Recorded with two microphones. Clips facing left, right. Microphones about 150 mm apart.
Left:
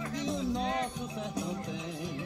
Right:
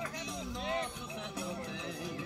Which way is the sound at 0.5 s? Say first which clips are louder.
Left 5 dB; 40° left (ahead or behind).